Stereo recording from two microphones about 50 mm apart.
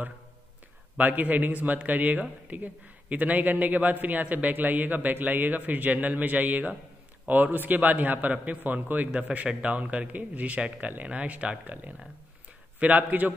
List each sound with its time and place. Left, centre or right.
0.9 s a man's voice: right